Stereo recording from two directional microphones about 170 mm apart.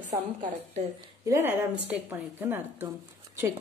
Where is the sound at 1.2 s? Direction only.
15° right (ahead or behind).